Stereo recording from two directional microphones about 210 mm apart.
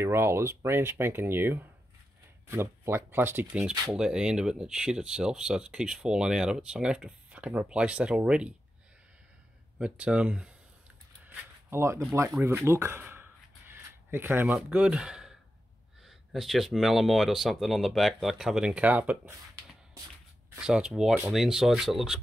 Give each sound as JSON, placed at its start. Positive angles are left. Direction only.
{"t": 0.0, "sound": "speech", "side_deg": -10}
{"t": 9.8, "sound": "speech", "side_deg": -5}
{"t": 11.2, "sound": "a sound", "side_deg": -10}
{"t": 12.0, "sound": "speech", "side_deg": -10}
{"t": 20.5, "sound": "speech", "side_deg": -5}